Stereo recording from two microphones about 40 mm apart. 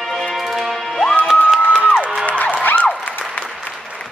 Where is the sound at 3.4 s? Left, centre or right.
Left.